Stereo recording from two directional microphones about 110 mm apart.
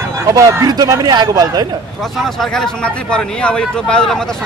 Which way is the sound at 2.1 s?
5° left (ahead or behind).